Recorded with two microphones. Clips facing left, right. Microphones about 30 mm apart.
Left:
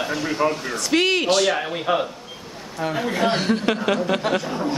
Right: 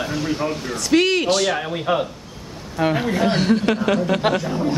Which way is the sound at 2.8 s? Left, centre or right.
Right.